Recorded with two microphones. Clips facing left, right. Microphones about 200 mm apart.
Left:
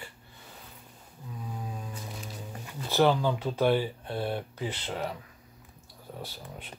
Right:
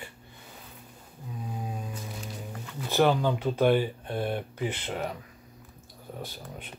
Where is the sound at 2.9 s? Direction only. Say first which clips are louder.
Right 1 dB; 15° right (ahead or behind).